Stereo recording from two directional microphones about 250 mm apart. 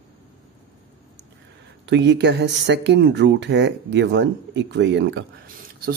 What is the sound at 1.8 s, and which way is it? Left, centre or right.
Speech, right.